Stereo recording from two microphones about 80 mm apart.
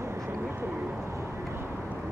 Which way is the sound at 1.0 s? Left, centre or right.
Right.